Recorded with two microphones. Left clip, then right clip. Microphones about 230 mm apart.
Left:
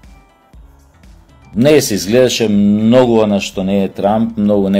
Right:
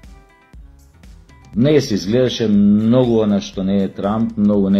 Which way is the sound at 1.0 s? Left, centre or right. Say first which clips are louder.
Even; centre.